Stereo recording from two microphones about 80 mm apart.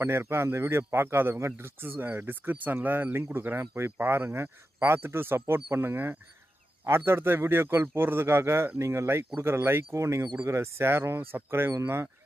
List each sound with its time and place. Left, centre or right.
0.0 s speech: right